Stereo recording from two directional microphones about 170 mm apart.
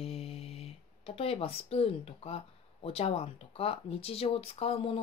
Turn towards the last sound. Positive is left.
turn(degrees=35)  # may be behind; listen again after turning